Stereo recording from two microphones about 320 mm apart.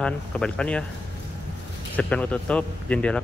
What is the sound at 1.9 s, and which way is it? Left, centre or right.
Speech, centre.